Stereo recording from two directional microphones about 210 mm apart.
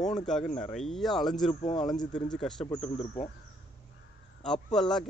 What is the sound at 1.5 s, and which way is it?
Speech, 35° left (ahead or behind).